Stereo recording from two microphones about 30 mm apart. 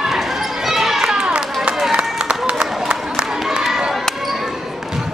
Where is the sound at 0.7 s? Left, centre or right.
Centre.